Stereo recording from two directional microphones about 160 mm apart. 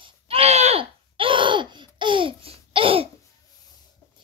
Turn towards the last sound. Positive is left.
turn(degrees=-35)  # may be behind; listen again after turning